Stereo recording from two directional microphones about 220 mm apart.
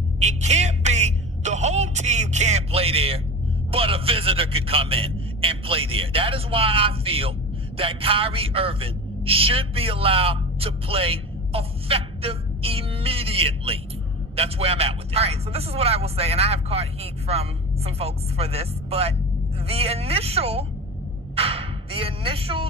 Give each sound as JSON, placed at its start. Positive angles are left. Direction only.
{"t": 0.2, "sound": "music", "side_deg": -30}
{"t": 3.7, "sound": "a man's voice", "side_deg": -25}